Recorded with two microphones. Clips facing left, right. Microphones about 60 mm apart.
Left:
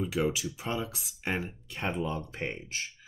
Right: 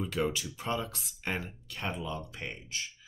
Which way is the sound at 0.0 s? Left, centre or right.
Centre.